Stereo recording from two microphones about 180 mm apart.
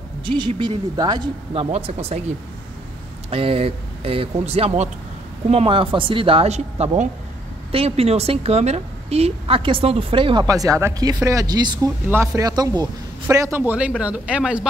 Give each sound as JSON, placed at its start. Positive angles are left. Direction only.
{"t": 0.2, "sound": "a woman's voice", "side_deg": -30}